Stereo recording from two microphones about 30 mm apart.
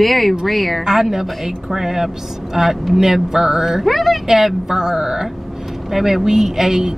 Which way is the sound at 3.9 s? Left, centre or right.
Centre.